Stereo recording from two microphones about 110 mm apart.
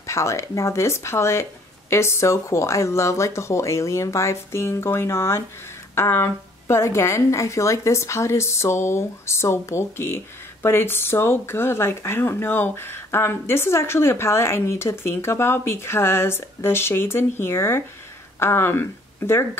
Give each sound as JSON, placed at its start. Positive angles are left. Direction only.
{"t": 0.0, "sound": "a woman's voice", "side_deg": 25}